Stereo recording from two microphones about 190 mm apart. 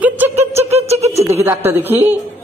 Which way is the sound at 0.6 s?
35° right (ahead or behind).